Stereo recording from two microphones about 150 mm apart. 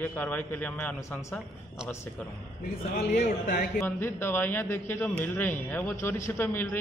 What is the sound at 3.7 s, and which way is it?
A man's voice, 15° left (ahead or behind).